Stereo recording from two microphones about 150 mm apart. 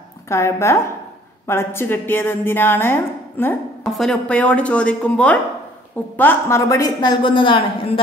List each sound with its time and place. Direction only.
0.3 s a woman's voice: 20° left (ahead or behind)
3.8 s a woman's voice: centre (ahead or behind); by 8.0 s 35° left (ahead or behind)